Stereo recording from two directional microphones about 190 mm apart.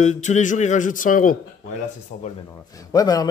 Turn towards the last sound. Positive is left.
turn(degrees=20)  # may be behind; listen again after turning